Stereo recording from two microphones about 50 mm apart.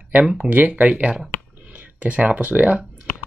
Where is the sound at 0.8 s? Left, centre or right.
Right.